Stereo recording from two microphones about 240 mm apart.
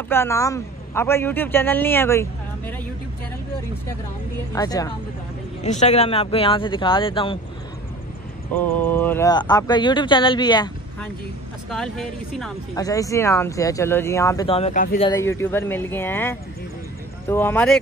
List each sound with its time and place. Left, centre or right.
0.1 s a man's voice: centre
4.5 s a man's voice: centre
5.6 s speech: left
8.8 s a man's voice: centre
11.7 s speech: centre
12.7 s a man's voice: centre; by 15.0 s left
15.0 s a man's voice: centre